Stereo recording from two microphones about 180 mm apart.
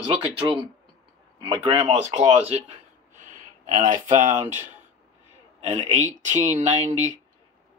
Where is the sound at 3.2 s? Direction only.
45° right (ahead or behind).